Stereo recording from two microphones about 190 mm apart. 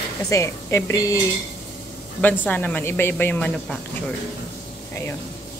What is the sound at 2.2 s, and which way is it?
Speech, 10° left (ahead or behind).